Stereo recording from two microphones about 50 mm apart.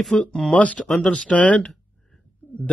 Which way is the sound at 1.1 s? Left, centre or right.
Left.